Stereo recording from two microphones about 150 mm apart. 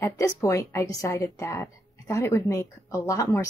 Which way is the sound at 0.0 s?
20° left (ahead or behind).